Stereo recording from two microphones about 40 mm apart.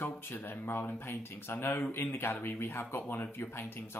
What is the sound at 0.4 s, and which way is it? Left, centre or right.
Speech, left.